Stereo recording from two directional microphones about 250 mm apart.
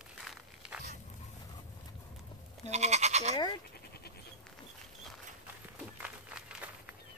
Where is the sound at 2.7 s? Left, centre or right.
Right.